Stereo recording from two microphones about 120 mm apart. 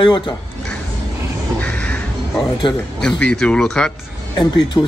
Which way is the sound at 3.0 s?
5° left (ahead or behind).